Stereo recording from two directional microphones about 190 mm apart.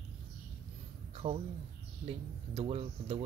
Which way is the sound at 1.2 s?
35° right (ahead or behind).